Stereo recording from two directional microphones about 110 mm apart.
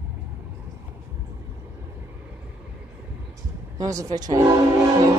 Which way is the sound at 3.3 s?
30° right (ahead or behind).